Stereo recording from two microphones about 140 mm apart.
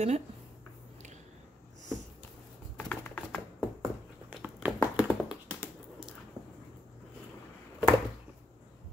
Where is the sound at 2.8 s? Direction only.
10° left (ahead or behind).